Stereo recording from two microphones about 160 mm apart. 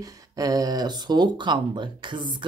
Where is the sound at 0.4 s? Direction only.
20° right (ahead or behind).